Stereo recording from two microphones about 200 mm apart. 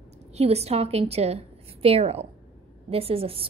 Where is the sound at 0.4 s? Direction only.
30° right (ahead or behind).